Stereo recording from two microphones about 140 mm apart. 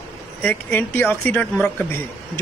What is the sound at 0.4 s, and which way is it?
Speech, 15° left (ahead or behind).